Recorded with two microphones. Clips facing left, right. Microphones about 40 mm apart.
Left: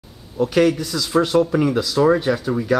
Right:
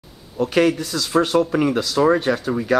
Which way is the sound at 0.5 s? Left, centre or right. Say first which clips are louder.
Even; centre.